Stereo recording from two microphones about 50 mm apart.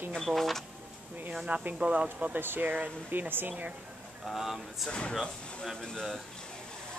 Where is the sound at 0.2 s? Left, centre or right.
Centre.